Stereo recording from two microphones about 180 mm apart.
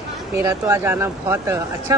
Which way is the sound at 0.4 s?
15° right (ahead or behind).